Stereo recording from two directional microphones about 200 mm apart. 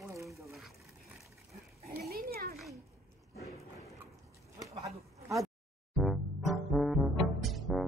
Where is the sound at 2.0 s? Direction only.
50° right (ahead or behind).